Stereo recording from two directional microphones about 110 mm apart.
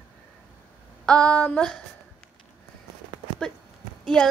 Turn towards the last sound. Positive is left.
turn(degrees=5)  # may be behind; listen again after turning